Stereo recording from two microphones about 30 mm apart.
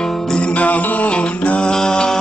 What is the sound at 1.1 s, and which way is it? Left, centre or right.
Music, left.